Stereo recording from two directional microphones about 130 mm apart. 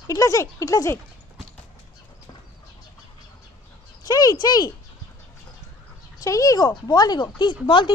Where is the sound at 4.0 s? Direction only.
30° left (ahead or behind).